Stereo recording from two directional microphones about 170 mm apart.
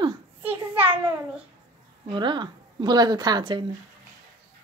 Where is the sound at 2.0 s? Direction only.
30° right (ahead or behind).